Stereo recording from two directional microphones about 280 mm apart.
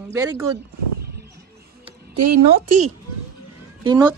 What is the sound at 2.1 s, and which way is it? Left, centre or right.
Speech, right.